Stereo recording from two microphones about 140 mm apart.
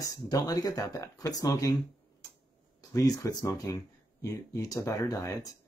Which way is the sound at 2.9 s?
25° left (ahead or behind).